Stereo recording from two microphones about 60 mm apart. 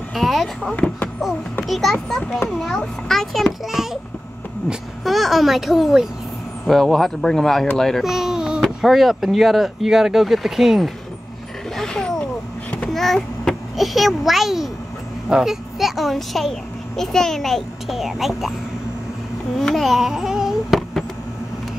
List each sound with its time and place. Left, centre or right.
0.1 s speech: centre
0.7 s speech: left
1.7 s speech: centre
5.0 s speech: centre
8.0 s baby cry: centre
8.6 s speech: centre
11.7 s roaring cats: centre
12.9 s a child's voice: centre
19.6 s speech: centre